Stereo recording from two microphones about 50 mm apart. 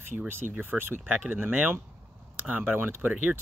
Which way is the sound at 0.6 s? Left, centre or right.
Right.